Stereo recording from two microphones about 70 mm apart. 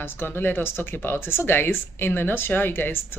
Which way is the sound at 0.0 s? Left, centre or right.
Left.